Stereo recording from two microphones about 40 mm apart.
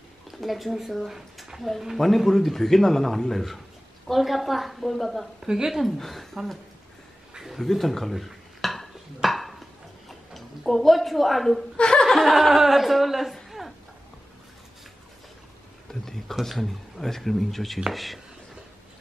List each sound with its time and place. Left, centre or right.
0.3 s speech: centre
5.4 s speech: centre
7.6 s dishes: centre
10.0 s a sound: centre
11.7 s speech: left
12.1 s speech: centre
13.5 s a sound: centre
15.9 s a sound: centre
16.3 s speech: centre